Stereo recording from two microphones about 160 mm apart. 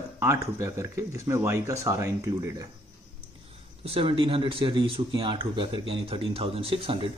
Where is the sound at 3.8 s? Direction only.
35° right (ahead or behind).